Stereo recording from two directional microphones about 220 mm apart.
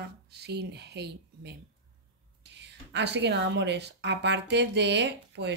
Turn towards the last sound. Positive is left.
turn(degrees=-50)  # may be behind; listen again after turning